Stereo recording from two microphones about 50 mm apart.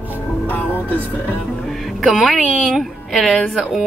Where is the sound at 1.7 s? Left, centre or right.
Centre.